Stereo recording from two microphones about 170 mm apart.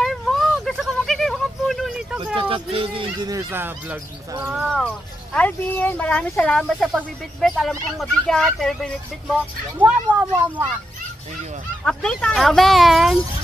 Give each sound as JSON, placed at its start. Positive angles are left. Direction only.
{"t": 0.0, "sound": "a sound", "side_deg": 0}
{"t": 2.3, "sound": "speech", "side_deg": -30}
{"t": 4.7, "sound": "speech", "side_deg": 5}
{"t": 9.8, "sound": "speech", "side_deg": -10}
{"t": 11.8, "sound": "speech", "side_deg": 5}